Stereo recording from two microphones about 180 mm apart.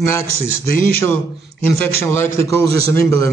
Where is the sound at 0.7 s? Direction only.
50° left (ahead or behind).